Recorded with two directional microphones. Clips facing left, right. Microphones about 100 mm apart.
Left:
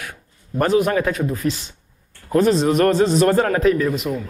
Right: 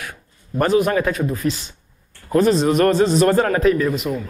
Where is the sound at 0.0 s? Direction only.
15° right (ahead or behind).